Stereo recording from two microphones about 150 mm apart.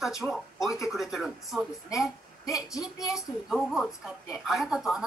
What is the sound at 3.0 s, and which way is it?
A woman's voice, centre (ahead or behind).